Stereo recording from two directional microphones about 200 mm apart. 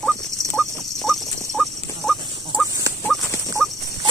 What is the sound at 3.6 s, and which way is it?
Rodents, centre (ahead or behind).